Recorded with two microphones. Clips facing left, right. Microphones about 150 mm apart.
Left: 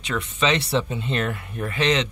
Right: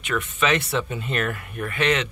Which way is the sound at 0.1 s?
25° left (ahead or behind).